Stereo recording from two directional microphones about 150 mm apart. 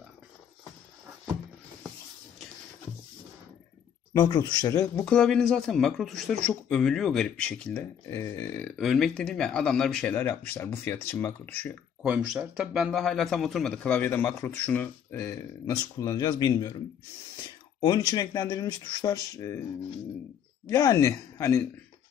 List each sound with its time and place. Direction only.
4.1 s speech: 25° left (ahead or behind)
5.0 s speech: 5° left (ahead or behind)
12.0 s speech: 5° right (ahead or behind); by 16.7 s 25° left (ahead or behind)
17.7 s speech: 25° left (ahead or behind)
20.6 s speech: 20° left (ahead or behind)